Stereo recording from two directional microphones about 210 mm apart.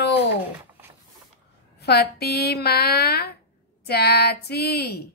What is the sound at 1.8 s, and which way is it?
A woman's voice, 50° left (ahead or behind).